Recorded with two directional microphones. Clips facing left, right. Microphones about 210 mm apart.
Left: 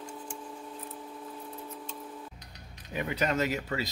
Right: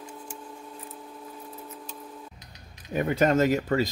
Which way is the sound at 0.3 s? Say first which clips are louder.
Even; 5° right (ahead or behind).